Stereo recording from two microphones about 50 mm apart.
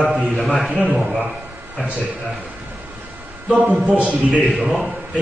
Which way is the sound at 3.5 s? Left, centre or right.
Right.